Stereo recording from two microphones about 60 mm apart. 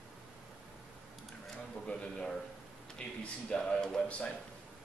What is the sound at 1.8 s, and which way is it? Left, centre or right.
Speech, centre.